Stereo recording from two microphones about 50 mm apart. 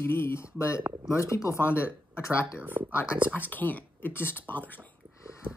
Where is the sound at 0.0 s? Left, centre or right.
Left.